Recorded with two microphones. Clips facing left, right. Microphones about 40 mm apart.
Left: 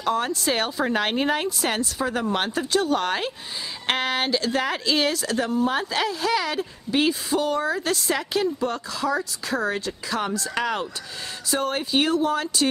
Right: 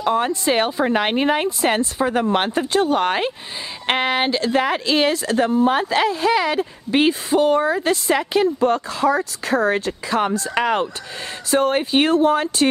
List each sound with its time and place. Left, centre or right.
0.0 s speech: right